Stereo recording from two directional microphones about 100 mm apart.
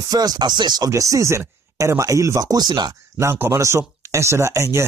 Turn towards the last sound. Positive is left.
turn(degrees=-30)  # may be behind; listen again after turning